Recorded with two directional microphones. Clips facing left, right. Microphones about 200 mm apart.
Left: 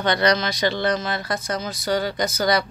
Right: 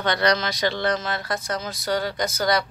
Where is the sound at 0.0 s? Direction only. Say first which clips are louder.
Left 2 dB; centre (ahead or behind).